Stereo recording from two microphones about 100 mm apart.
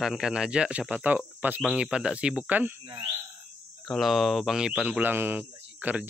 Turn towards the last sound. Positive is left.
turn(degrees=-15)  # may be behind; listen again after turning